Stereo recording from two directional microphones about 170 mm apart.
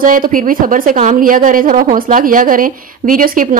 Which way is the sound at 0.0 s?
55° right (ahead or behind).